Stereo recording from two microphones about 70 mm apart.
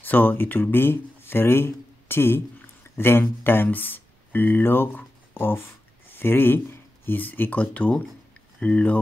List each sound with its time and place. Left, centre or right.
0.0 s speech: left